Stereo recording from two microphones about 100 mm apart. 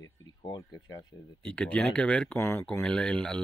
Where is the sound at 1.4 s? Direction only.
10° left (ahead or behind).